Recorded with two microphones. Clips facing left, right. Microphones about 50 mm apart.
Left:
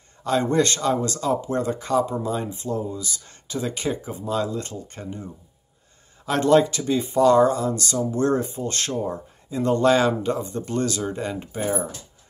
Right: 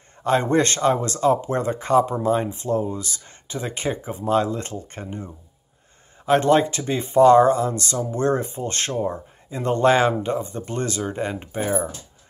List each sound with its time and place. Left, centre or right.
0.2 s speech: right
3.3 s speech: right
4.2 s speech: right
6.2 s speech: right